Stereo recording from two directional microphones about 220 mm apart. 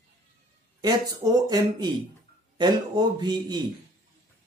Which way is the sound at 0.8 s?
15° right (ahead or behind).